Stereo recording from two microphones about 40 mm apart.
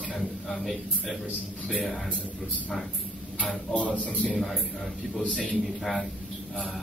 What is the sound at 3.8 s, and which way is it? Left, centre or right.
Speech, left.